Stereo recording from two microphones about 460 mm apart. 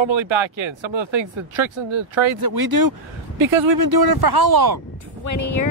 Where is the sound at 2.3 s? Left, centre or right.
Right.